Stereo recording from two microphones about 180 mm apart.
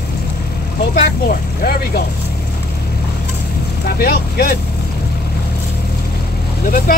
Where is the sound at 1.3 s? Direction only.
55° left (ahead or behind).